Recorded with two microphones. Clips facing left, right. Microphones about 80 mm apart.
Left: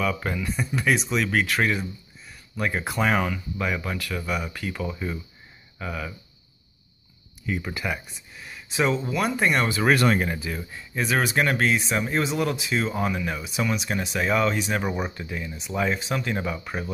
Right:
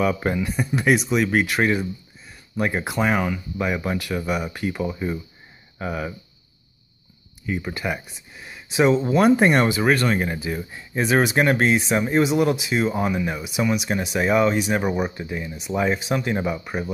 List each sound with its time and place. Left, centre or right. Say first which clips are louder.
0.0 s speech: right 5 dB; right
0.4 s speech: right 4 dB; centre
7.4 s speech: right 2 dB; centre
8.9 s speech: right 9 dB; right
9.7 s speech: right 1 dB; centre
11.0 s speech: right 4 dB; right